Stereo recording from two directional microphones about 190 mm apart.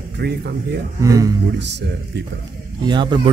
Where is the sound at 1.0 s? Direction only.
20° right (ahead or behind).